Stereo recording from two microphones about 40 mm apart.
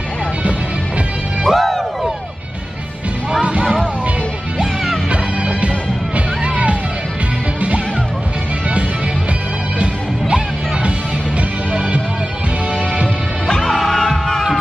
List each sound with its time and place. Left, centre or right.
1.4 s music: centre
6.1 s music: right
9.8 s music: right
13.5 s music: centre